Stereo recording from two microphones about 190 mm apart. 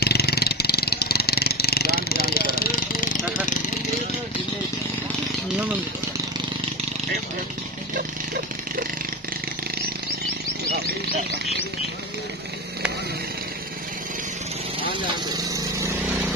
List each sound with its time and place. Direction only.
0.0 s vehicle: 55° left (ahead or behind)
15.3 s vehicle: 20° right (ahead or behind)